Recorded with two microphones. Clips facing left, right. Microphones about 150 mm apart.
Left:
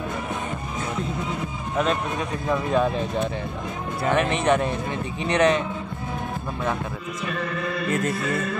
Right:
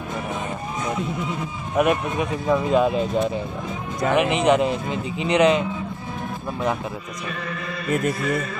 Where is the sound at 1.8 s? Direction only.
15° right (ahead or behind).